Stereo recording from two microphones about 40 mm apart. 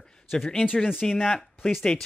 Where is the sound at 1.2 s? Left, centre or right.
Centre.